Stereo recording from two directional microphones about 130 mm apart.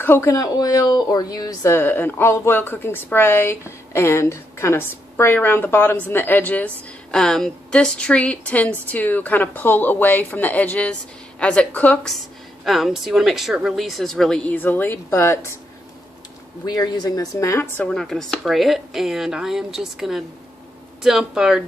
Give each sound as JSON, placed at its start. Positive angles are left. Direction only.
{"t": 0.0, "sound": "speech", "side_deg": 20}
{"t": 12.6, "sound": "a woman's voice", "side_deg": 0}
{"t": 16.6, "sound": "a woman's voice", "side_deg": 30}
{"t": 17.8, "sound": "a woman's voice", "side_deg": 5}